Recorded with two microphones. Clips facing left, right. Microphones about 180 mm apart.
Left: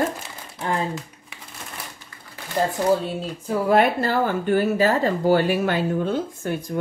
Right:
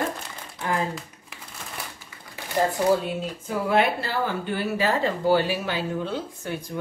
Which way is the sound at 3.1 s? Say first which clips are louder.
Left 3 dB; 35° left (ahead or behind).